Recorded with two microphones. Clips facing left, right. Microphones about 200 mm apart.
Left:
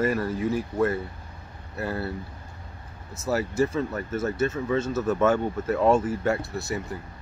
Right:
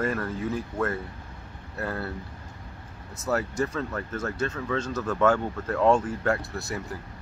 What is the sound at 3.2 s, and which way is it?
Speech, 5° left (ahead or behind).